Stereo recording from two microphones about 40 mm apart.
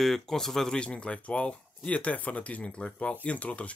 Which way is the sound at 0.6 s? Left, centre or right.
Left.